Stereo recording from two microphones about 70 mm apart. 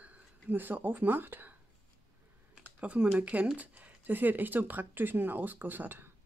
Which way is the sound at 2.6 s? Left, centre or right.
Centre.